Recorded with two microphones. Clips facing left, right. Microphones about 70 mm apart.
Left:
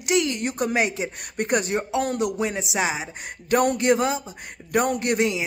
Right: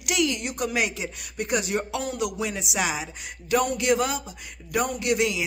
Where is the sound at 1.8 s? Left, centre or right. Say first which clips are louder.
Left 4 dB; left.